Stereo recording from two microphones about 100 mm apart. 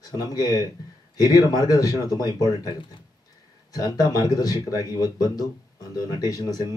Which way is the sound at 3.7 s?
40° left (ahead or behind).